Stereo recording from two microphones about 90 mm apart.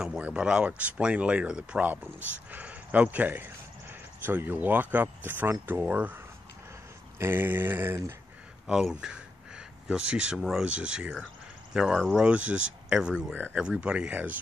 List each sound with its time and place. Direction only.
0.0 s speech: 10° right (ahead or behind)
7.2 s a sound: 25° right (ahead or behind)
8.6 s speech: 5° right (ahead or behind)